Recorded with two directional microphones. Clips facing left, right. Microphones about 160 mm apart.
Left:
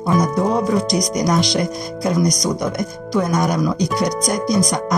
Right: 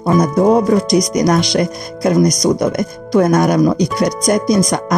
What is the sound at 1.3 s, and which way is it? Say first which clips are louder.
Speech: right 4 dB; 65° right (ahead or behind).